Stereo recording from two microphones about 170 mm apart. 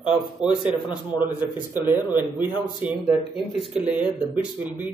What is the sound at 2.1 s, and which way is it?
Speech, 10° right (ahead or behind).